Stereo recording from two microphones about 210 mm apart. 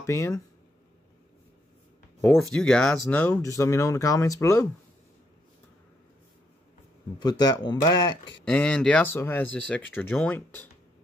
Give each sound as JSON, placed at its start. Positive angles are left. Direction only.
{"t": 0.0, "sound": "speech", "side_deg": 15}
{"t": 2.2, "sound": "speech", "side_deg": 0}
{"t": 7.2, "sound": "speech", "side_deg": 20}
{"t": 8.5, "sound": "speech", "side_deg": 5}